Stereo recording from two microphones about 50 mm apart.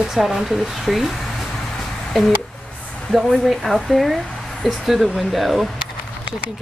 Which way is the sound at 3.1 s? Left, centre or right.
Centre.